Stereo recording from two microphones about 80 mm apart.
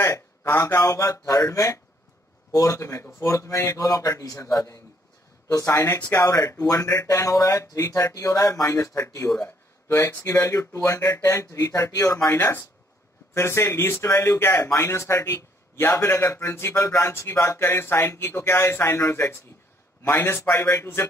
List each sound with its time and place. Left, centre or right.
0.0 s a man's voice: left